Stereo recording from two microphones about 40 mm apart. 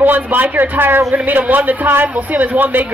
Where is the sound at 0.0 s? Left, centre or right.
Right.